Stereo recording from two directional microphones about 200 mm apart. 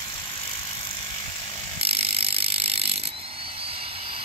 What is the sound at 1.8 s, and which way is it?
Mechanisms, 30° right (ahead or behind).